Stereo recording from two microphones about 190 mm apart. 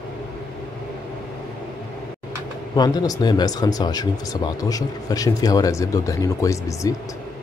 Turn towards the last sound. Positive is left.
turn(degrees=15)  # may be behind; listen again after turning